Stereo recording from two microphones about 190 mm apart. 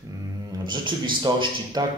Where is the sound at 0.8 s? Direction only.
25° right (ahead or behind).